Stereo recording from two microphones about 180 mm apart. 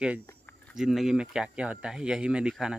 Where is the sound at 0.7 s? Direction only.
Centre (ahead or behind).